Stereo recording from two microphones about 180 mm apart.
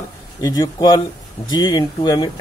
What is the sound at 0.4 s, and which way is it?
Speech, 20° left (ahead or behind).